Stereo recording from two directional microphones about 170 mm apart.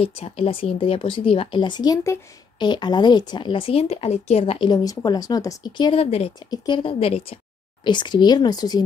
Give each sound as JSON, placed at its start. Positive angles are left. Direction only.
{"t": 0.0, "sound": "speech", "side_deg": 35}
{"t": 6.4, "sound": "speech", "side_deg": 25}